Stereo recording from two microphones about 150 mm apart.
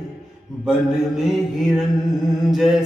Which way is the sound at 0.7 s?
5° right (ahead or behind).